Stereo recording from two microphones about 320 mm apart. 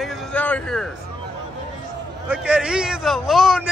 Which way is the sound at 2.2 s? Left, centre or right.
Centre.